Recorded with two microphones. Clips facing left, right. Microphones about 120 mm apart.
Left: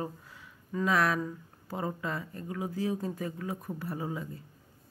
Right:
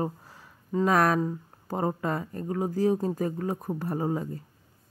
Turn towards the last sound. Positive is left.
turn(degrees=-40)  # may be behind; listen again after turning